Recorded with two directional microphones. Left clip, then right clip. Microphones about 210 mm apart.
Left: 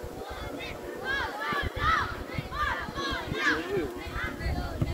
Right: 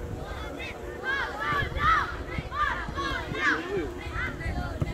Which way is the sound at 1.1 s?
20° right (ahead or behind).